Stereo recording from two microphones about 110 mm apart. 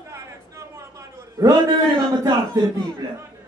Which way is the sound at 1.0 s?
30° right (ahead or behind).